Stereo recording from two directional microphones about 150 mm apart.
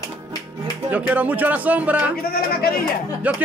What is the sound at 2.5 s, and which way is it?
Speech, 90° left.